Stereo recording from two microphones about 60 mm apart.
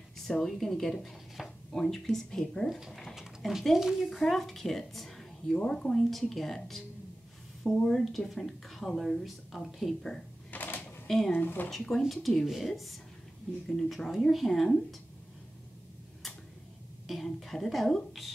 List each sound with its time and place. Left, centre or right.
0.3 s speech: centre
1.0 s a sound: centre
1.7 s a woman's voice: centre
2.9 s a sound: centre
3.2 s a sound: centre
3.7 s speech: centre
4.2 s a woman's voice: centre
10.5 s a sound: left
11.1 s speech: centre
11.3 s speech: left
11.7 s speech: centre
17.1 s speech: centre